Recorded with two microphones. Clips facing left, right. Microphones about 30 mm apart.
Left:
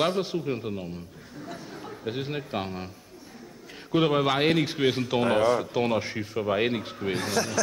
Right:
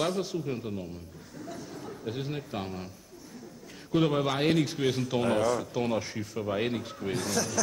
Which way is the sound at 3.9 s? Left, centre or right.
Left.